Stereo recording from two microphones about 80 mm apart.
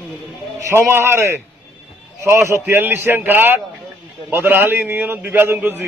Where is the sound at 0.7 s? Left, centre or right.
Right.